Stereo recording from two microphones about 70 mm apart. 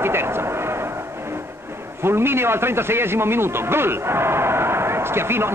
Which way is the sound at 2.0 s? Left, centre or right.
Right.